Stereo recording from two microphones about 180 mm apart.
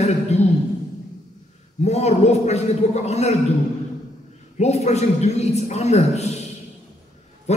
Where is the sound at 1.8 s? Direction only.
35° left (ahead or behind).